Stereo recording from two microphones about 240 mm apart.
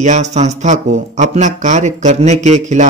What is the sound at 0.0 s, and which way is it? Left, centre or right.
A man's voice, right.